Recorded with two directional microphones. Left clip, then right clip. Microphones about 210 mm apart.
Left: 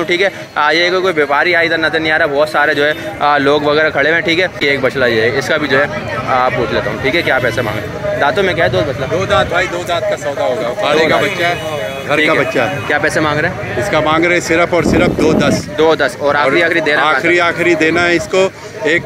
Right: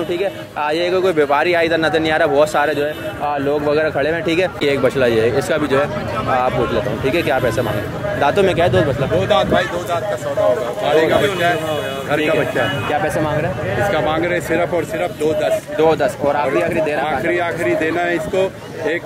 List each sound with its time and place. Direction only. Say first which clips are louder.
0.1 s speech: left 7 dB; centre (ahead or behind)
2.8 s speech: left 7 dB; 10° left (ahead or behind)
3.6 s speech: left 5 dB; 5° right (ahead or behind)
9.3 s a man's voice: left 3 dB; 50° left (ahead or behind)
10.8 s a man's voice: left 4 dB; 45° left (ahead or behind)
12.9 s speech: left 7 dB; 5° left (ahead or behind)
13.9 s speech: left 6 dB; 40° left (ahead or behind)
15.8 s speech: left 4 dB; 5° right (ahead or behind)
17.0 s speech: left 7 dB; 40° left (ahead or behind)